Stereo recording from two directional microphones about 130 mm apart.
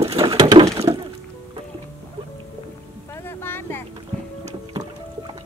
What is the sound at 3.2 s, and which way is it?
Boat, 15° left (ahead or behind).